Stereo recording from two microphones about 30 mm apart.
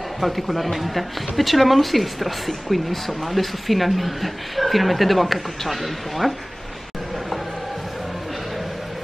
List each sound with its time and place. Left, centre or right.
0.2 s a woman's voice: centre